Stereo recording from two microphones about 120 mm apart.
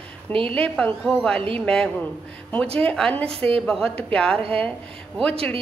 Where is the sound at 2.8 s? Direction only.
10° left (ahead or behind).